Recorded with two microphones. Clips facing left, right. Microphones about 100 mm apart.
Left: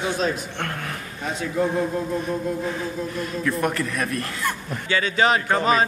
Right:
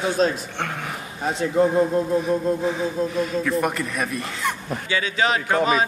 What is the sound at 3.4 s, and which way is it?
A man's voice, 5° right (ahead or behind).